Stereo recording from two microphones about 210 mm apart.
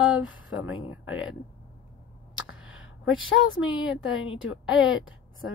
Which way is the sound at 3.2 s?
70° left (ahead or behind).